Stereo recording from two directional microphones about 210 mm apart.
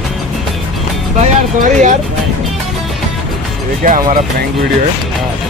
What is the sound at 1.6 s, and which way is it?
Speech, 35° right (ahead or behind).